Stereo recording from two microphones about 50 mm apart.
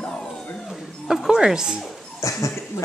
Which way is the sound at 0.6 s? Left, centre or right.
Centre.